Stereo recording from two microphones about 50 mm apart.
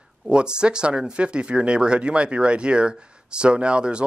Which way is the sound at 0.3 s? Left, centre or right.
Centre.